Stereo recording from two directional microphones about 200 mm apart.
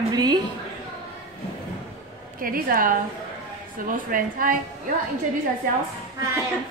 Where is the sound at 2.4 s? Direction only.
45° right (ahead or behind).